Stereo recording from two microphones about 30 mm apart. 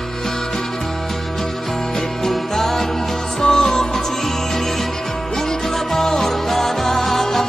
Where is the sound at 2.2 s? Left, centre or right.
Centre.